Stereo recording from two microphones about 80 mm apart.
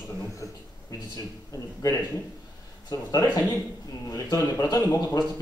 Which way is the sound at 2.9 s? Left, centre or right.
Left.